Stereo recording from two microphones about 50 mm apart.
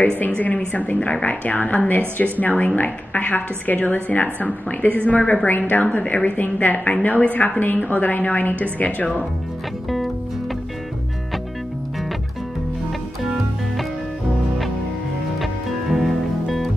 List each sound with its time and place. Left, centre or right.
0.7 s a woman's voice: left
5.5 s a woman's voice: left
15.4 s music: centre